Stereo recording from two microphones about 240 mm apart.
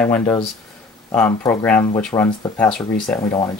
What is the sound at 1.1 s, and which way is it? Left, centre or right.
Speech, centre.